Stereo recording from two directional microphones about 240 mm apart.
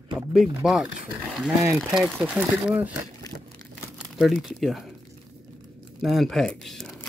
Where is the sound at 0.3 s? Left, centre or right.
Centre.